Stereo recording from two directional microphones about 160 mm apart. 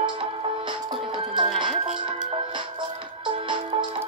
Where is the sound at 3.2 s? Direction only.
30° right (ahead or behind).